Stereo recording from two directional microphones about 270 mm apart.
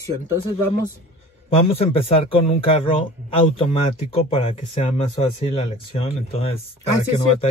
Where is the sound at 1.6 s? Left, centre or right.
Left.